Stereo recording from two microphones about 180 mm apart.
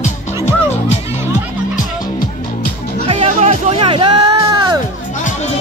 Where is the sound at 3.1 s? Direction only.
35° right (ahead or behind).